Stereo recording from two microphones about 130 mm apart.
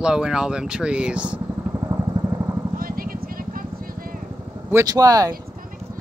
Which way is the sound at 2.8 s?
90° right.